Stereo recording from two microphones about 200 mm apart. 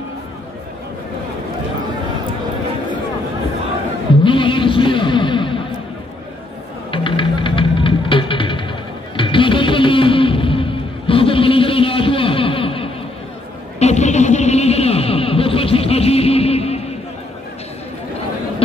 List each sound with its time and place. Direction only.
4.2 s music: 25° left (ahead or behind)
6.9 s music: 25° left (ahead or behind)
13.7 s a sound: 35° left (ahead or behind)